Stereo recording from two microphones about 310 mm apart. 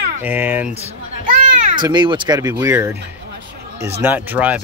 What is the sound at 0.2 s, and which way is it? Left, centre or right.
Speech, centre.